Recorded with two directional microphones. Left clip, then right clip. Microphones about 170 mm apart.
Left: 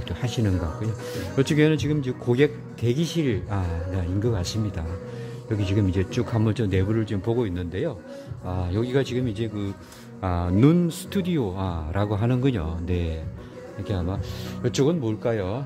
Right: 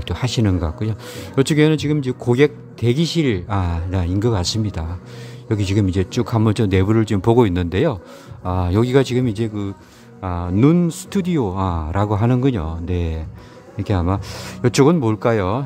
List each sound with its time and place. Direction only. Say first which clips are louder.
0.1 s speech: right 7 dB; 35° right (ahead or behind)
10.2 s speech: right 4 dB; 15° right (ahead or behind)
13.8 s speech: right 9 dB; 45° right (ahead or behind)